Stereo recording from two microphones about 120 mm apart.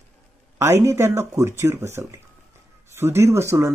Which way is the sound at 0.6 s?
25° right (ahead or behind).